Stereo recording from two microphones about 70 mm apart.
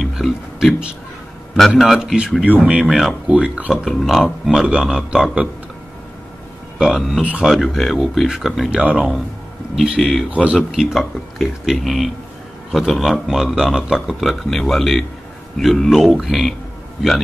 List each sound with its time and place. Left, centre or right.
0.0 s a sound: centre
1.8 s a man's voice: centre
2.8 s a man's voice: centre
3.3 s a man's voice: centre
3.9 s a man's voice: centre
6.8 s speech: centre
8.6 s a man's voice: centre
10.3 s speech: centre
10.7 s a man's voice: centre